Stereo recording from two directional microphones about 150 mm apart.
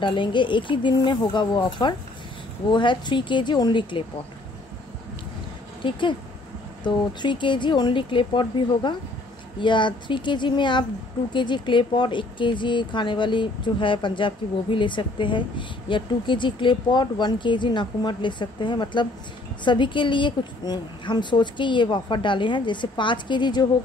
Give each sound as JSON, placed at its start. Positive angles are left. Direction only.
{"t": 0.0, "sound": "speech", "side_deg": 30}
{"t": 5.9, "sound": "speech", "side_deg": 30}